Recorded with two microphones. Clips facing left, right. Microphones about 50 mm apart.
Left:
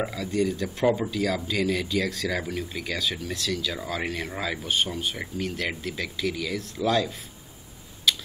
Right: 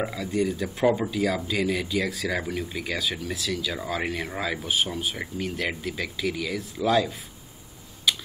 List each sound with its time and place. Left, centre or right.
0.0 s speech: centre
8.1 s typing: centre